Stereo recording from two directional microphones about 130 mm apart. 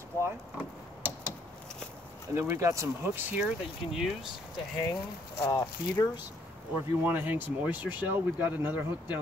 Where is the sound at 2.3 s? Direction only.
20° right (ahead or behind).